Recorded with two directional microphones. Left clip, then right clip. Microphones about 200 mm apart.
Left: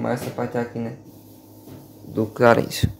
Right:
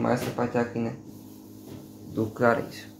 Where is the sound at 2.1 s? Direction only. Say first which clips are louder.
Left 7 dB; 50° left (ahead or behind).